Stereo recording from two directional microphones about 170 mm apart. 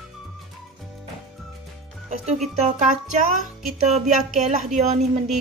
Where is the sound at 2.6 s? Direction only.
45° right (ahead or behind).